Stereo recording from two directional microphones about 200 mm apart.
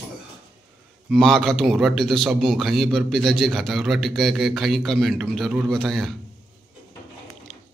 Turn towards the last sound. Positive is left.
turn(degrees=0)  # may be behind; listen again after turning